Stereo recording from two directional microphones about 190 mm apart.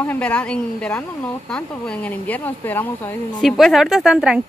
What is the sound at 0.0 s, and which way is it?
A woman's voice, 10° left (ahead or behind).